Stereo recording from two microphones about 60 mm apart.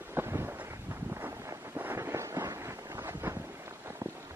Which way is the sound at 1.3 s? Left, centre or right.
Right.